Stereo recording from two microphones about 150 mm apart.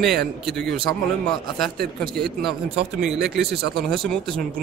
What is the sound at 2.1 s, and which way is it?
Speech, centre (ahead or behind).